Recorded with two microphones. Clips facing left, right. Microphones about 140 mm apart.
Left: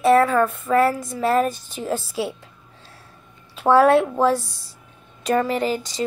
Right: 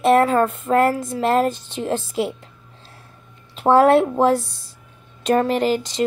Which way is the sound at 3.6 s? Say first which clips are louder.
Right 1 dB; 25° right (ahead or behind).